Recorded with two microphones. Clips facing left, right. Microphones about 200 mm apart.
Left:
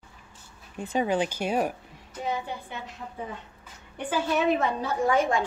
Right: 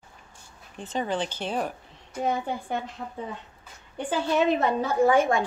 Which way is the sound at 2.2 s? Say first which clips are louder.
Right 4 dB; 50° right (ahead or behind).